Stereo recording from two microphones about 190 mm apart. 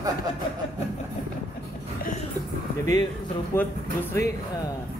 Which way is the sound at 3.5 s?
15° left (ahead or behind).